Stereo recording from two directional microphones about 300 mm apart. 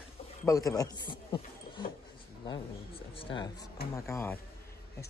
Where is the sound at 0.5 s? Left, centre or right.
Centre.